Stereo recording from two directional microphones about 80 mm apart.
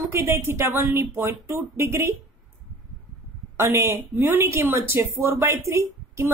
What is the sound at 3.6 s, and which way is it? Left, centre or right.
Speech, right.